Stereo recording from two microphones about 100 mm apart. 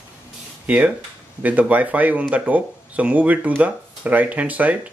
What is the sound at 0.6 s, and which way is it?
Speech, 15° right (ahead or behind).